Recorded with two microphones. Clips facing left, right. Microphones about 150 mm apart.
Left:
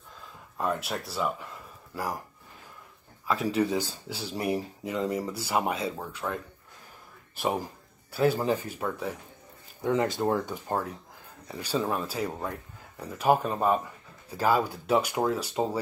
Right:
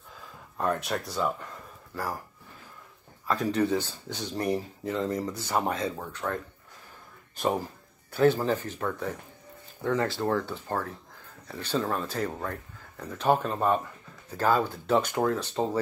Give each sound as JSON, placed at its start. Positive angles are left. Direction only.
{"t": 0.2, "sound": "speech", "side_deg": 0}
{"t": 3.3, "sound": "speech", "side_deg": 5}